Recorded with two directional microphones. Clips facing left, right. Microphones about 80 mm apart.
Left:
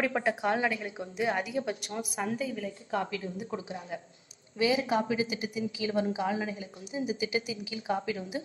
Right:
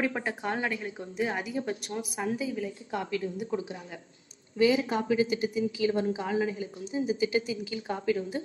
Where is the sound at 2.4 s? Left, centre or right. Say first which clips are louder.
Right 2 dB; centre.